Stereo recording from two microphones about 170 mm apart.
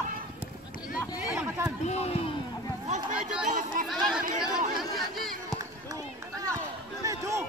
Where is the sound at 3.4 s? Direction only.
45° right (ahead or behind).